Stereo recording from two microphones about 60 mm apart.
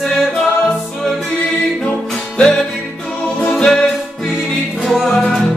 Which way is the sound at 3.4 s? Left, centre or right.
Centre.